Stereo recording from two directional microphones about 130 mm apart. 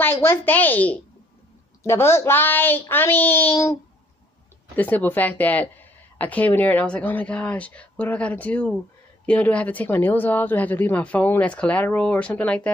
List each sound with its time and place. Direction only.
0.0 s speech: 15° left (ahead or behind)
4.7 s speech: 10° left (ahead or behind)